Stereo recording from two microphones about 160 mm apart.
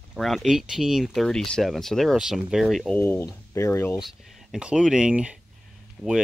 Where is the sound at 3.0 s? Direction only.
15° left (ahead or behind).